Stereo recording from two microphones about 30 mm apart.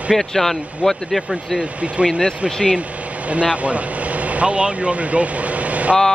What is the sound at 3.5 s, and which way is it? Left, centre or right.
Speech, right.